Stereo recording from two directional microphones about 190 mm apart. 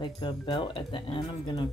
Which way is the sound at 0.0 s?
25° left (ahead or behind).